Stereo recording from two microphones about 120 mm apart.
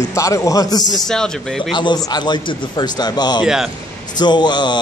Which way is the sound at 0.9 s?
5° left (ahead or behind).